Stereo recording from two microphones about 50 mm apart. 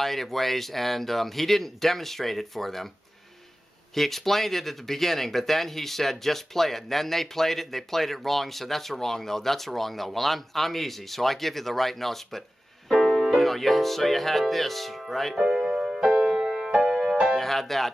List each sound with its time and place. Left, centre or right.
0.0 s speech: centre
3.9 s speech: centre
15.3 s music: centre
17.4 s speech: centre